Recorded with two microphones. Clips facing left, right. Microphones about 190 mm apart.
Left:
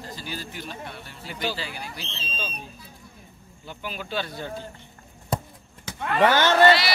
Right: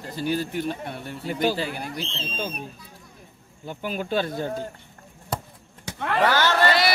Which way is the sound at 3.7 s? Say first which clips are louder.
Right 6 dB; 45° right (ahead or behind).